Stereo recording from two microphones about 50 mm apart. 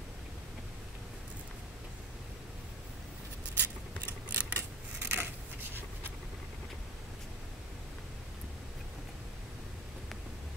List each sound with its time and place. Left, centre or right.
3.5 s scissors: right
5.0 s scissors: right